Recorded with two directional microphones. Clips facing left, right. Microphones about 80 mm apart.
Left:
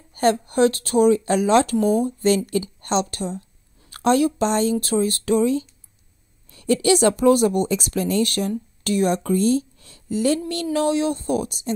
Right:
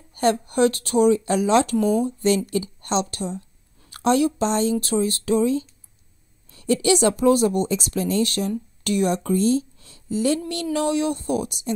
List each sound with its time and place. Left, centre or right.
0.1 s speech: left
6.8 s speech: left
8.8 s speech: left
9.1 s speech: left
10.5 s speech: left